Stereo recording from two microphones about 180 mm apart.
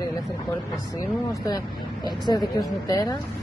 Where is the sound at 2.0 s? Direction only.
25° left (ahead or behind).